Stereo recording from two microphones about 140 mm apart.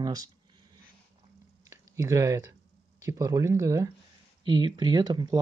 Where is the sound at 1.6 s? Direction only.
20° right (ahead or behind).